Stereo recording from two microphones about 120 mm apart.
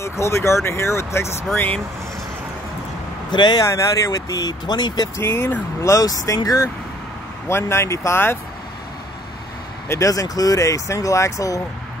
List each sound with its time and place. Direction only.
0.0 s speech: 20° left (ahead or behind)
1.5 s speech: 10° left (ahead or behind)
3.3 s speech: 35° left (ahead or behind)
3.6 s speech: 25° left (ahead or behind)
9.8 s speech: 25° left (ahead or behind)